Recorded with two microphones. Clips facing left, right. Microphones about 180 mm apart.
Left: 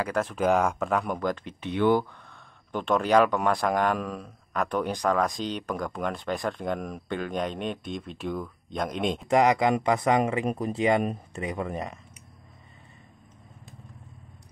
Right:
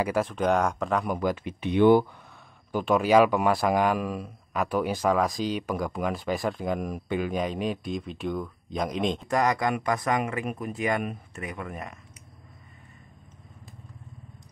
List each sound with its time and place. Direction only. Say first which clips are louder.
0.0 s speech: right 1 dB; 5° right (ahead or behind)
2.7 s speech: right 2 dB; 5° right (ahead or behind)
9.3 s speech: left 5 dB; 20° left (ahead or behind)